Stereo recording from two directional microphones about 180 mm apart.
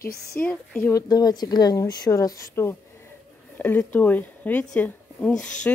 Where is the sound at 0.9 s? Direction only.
20° left (ahead or behind).